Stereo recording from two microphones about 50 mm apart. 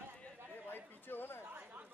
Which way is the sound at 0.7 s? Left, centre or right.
Left.